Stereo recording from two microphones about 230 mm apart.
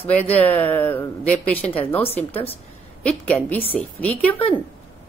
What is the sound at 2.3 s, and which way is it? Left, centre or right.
Speech, left.